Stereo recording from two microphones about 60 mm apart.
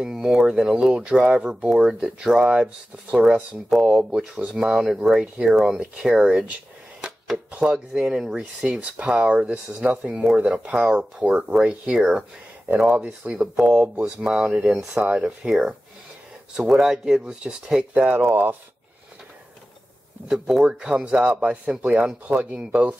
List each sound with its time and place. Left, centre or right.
0.0 s speech: centre
7.0 s a sound: centre
7.6 s speech: centre
13.3 s speech: centre
18.3 s speech: right
20.2 s speech: centre
20.6 s speech: centre